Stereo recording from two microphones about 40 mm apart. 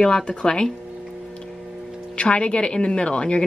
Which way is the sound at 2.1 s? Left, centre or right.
Left.